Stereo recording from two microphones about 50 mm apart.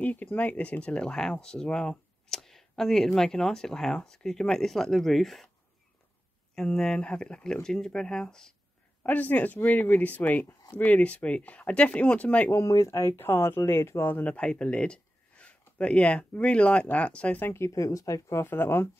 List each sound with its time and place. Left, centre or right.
0.0 s speech: left; by 5.5 s centre
6.5 s speech: centre
9.0 s speech: left
12.5 s speech: left
13.1 s speech: left
14.2 s speech: left
17.5 s speech: left
18.4 s speech: left